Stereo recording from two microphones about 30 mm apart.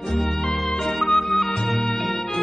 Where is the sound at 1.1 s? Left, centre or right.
Centre.